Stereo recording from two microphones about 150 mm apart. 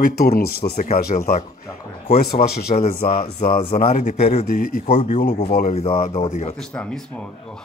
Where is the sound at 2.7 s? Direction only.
50° left (ahead or behind).